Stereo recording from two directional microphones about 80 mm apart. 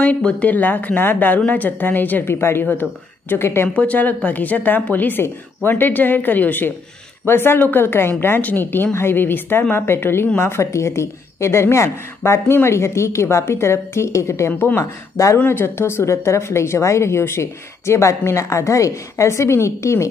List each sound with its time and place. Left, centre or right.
0.0 s a woman's voice: centre
3.6 s a woman's voice: centre; by 14.5 s left
14.5 s a woman's voice: left
14.8 s a woman's voice: left
15.3 s a woman's voice: left